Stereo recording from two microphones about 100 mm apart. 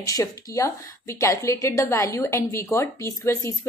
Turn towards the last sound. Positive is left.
turn(degrees=25)  # may be behind; listen again after turning